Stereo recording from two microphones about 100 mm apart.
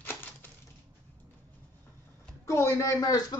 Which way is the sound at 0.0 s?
20° left (ahead or behind).